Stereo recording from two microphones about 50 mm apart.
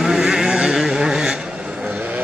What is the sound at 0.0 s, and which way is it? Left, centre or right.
Vehicle, centre.